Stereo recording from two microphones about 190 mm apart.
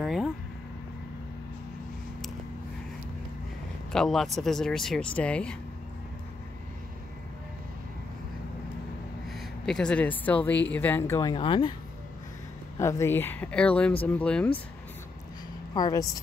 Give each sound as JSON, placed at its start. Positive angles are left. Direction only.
{"t": 0.0, "sound": "vehicle", "side_deg": 0}
{"t": 3.9, "sound": "speech", "side_deg": 0}
{"t": 9.3, "sound": "speech", "side_deg": 5}
{"t": 12.7, "sound": "speech", "side_deg": 15}
{"t": 15.7, "sound": "speech", "side_deg": 20}